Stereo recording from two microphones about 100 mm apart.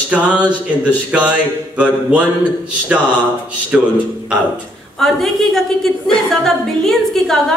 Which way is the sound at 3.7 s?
15° right (ahead or behind).